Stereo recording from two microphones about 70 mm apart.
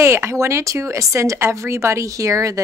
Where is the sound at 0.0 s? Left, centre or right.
Right.